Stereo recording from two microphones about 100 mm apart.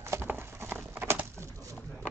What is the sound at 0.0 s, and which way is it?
Clip-clop, 25° right (ahead or behind).